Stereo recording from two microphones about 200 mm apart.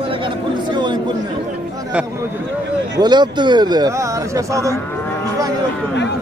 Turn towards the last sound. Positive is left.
turn(degrees=-15)  # may be behind; listen again after turning